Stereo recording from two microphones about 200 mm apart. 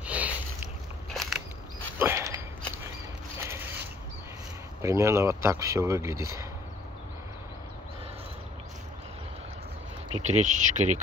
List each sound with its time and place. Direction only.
0.0 s a sound: 5° right (ahead or behind)
2.0 s mechanisms: 15° right (ahead or behind)
4.8 s speech: 15° right (ahead or behind)
10.1 s speech: 35° right (ahead or behind)